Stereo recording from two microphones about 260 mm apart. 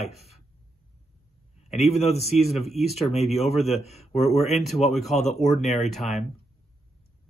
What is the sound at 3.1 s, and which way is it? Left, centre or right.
Speech, left.